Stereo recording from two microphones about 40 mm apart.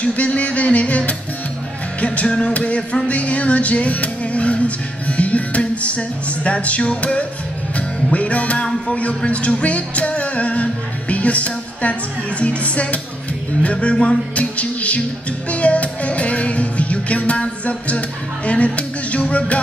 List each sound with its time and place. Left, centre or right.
0.0 s music: left